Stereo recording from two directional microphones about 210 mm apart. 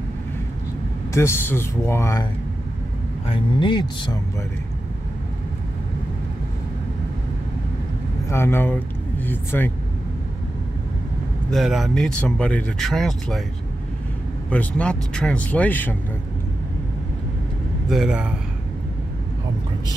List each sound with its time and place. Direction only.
1.1 s speech: 10° left (ahead or behind)
3.3 s speech: 25° left (ahead or behind)
8.3 s speech: 10° left (ahead or behind)
11.5 s speech: centre (ahead or behind)
14.5 s speech: 5° left (ahead or behind)
17.8 s speech: 5° right (ahead or behind)